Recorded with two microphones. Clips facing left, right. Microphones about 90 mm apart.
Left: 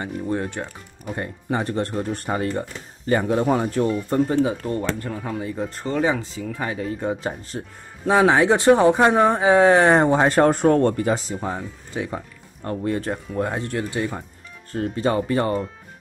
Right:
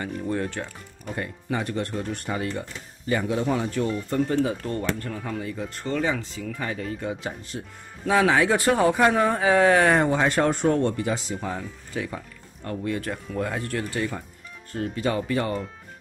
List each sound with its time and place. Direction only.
0.3 s speech: 20° left (ahead or behind); by 3.8 s 40° left (ahead or behind)
4.3 s speech: 20° left (ahead or behind)
7.0 s speech: 40° left (ahead or behind)
8.0 s speech: 30° left (ahead or behind); by 11.2 s 45° left (ahead or behind)
11.4 s speech: 25° left (ahead or behind)
14.7 s speech: 35° left (ahead or behind)